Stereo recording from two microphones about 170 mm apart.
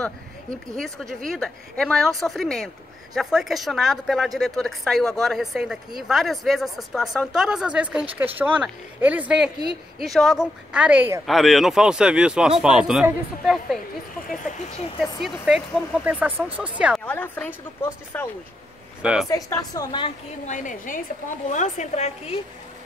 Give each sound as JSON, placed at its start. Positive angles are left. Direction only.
{"t": 0.7, "sound": "a woman's voice", "side_deg": 5}
{"t": 11.2, "sound": "a woman's voice", "side_deg": 0}
{"t": 15.4, "sound": "a woman's voice", "side_deg": -5}
{"t": 17.0, "sound": "a woman's voice", "side_deg": 10}
{"t": 20.4, "sound": "a woman's voice", "side_deg": 50}